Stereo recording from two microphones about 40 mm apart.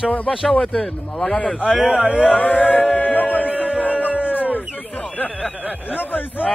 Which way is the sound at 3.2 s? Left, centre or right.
Left.